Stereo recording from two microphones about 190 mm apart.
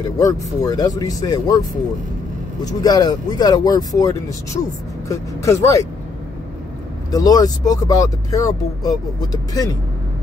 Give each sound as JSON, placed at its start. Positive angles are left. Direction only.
{"t": 0.2, "sound": "speech", "side_deg": 20}
{"t": 2.6, "sound": "speech", "side_deg": 20}
{"t": 7.1, "sound": "speech", "side_deg": 20}